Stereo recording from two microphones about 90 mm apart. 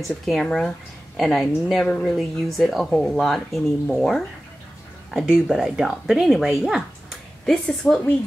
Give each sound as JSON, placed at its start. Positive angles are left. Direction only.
{"t": 0.0, "sound": "speech", "side_deg": 0}
{"t": 6.6, "sound": "a sound", "side_deg": -5}
{"t": 7.8, "sound": "speech", "side_deg": 20}